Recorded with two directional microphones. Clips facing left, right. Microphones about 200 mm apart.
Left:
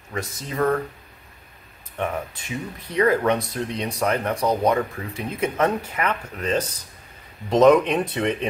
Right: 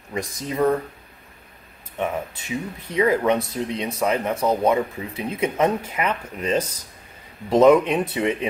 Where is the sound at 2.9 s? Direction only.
10° right (ahead or behind).